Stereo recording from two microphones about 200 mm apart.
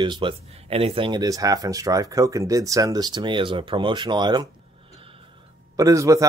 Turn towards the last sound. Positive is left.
turn(degrees=-15)  # may be behind; listen again after turning